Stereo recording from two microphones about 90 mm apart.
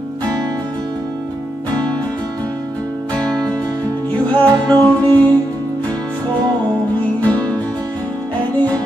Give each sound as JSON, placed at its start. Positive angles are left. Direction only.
{"t": 4.3, "sound": "music", "side_deg": 15}
{"t": 7.2, "sound": "music", "side_deg": 15}